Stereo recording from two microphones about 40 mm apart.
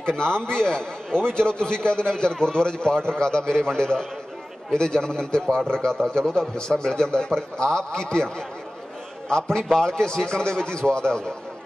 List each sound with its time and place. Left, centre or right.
0.0 s a man's voice: left